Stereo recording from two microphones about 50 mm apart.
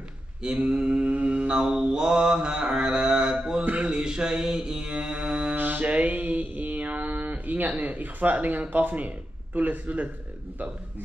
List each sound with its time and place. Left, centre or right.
0.4 s mantra: centre
3.6 s mantra: right
5.5 s mantra: right